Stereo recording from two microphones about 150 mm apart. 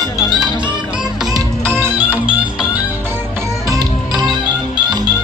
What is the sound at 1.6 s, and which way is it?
Music, 15° right (ahead or behind).